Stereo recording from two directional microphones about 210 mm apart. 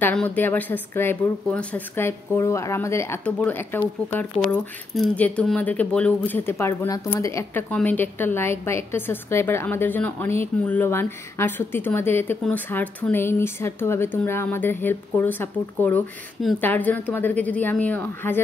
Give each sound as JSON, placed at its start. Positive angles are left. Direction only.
{"t": 0.0, "sound": "speech", "side_deg": 5}